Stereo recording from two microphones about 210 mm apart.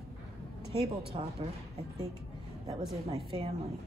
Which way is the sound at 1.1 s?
30° right (ahead or behind).